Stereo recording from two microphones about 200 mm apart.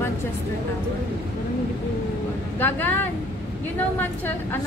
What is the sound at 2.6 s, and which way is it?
Speech, 10° left (ahead or behind).